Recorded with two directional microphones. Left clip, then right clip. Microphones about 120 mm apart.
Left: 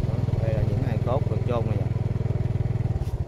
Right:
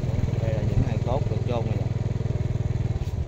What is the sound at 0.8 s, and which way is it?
Vehicle, 5° left (ahead or behind).